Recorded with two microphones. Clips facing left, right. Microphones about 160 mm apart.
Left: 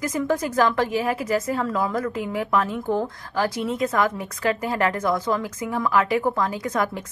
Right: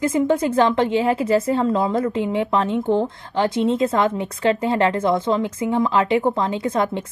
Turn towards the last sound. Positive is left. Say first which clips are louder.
# right 4 dB
turn(degrees=-25)  # may be behind; listen again after turning